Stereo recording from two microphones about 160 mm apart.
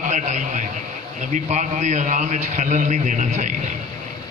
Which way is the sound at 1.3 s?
45° right (ahead or behind).